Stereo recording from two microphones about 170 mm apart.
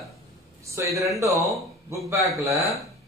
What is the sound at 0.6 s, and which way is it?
Speech, 15° right (ahead or behind).